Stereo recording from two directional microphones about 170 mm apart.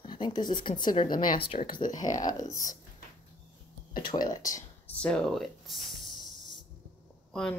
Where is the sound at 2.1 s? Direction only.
20° left (ahead or behind).